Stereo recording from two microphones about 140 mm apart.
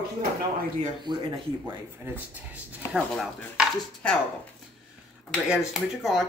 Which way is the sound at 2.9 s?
Centre (ahead or behind).